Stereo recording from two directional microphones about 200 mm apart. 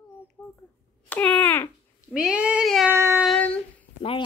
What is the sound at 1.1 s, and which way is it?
Speech, 5° left (ahead or behind).